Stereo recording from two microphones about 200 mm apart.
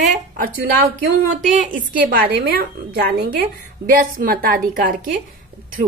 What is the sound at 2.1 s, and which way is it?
A woman's voice, 50° right (ahead or behind).